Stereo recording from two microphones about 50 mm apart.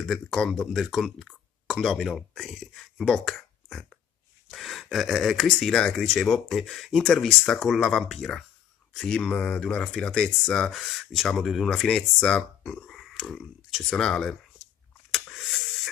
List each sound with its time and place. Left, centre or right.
0.0 s speech: centre
9.3 s speech: left
10.7 s speech: centre
12.8 s burping: centre
13.1 s speech: centre
13.8 s speech: centre
15.1 s a sound: centre